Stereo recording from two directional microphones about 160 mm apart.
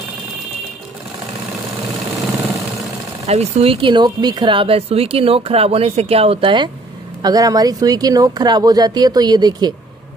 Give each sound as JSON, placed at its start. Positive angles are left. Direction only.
{"t": 3.3, "sound": "speech", "side_deg": -40}